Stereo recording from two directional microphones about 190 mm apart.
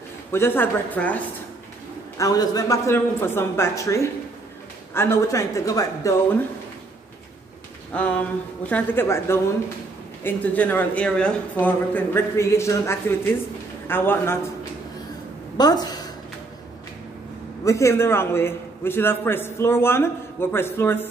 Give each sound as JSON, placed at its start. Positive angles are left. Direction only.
{"t": 0.3, "sound": "a man's voice", "side_deg": 10}
{"t": 2.1, "sound": "a man's voice", "side_deg": 20}
{"t": 7.9, "sound": "a man's voice", "side_deg": 5}
{"t": 17.6, "sound": "a man's voice", "side_deg": 15}